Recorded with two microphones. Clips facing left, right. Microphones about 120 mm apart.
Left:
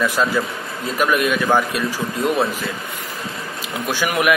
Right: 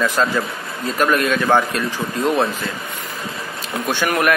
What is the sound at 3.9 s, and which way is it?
Speech, 5° left (ahead or behind).